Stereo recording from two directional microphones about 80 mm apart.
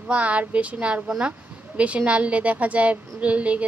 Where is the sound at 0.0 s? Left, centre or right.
Centre.